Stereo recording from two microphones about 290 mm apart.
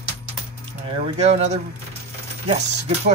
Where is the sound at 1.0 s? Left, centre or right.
Right.